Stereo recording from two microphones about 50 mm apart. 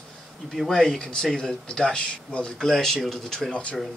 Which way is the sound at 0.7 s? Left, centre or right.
Centre.